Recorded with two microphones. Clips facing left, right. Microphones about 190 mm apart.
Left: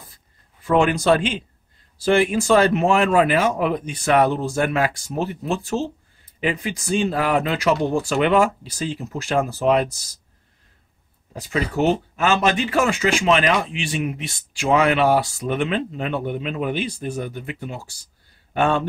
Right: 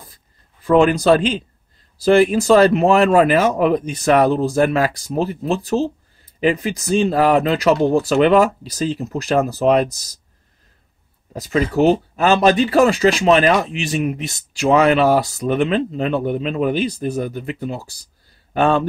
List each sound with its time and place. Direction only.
0.7 s speech: 35° right (ahead or behind)
11.3 s speech: 40° right (ahead or behind)